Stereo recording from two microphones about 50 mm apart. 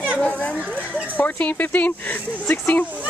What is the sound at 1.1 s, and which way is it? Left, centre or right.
Speech, left.